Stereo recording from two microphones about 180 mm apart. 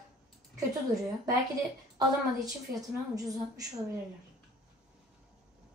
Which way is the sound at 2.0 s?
20° right (ahead or behind).